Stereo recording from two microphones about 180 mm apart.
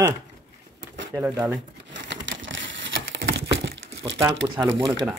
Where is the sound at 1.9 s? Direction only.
90° right.